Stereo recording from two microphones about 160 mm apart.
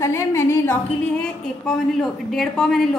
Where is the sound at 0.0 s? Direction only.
15° left (ahead or behind).